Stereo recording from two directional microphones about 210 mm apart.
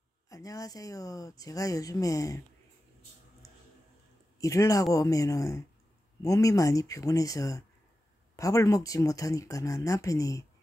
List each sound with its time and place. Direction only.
0.3 s speech: 15° left (ahead or behind)
4.4 s speech: 15° left (ahead or behind)